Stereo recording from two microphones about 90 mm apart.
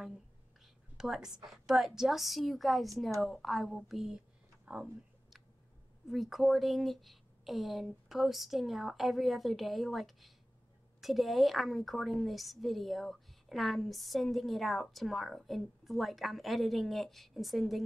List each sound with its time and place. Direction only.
0.9 s a woman's voice: 5° right (ahead or behind)
6.0 s a woman's voice: centre (ahead or behind)